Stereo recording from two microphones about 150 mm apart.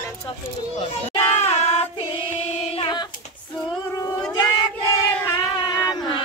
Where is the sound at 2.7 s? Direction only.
35° left (ahead or behind).